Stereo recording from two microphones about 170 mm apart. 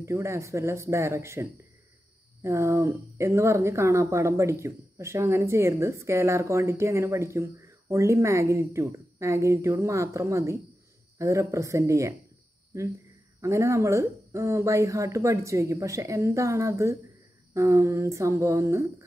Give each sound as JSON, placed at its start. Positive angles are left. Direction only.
{"t": 0.0, "sound": "speech", "side_deg": -15}